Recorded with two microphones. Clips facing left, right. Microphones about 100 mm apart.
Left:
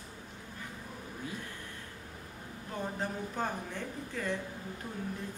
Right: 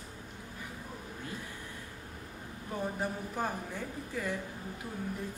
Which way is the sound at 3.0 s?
10° right (ahead or behind).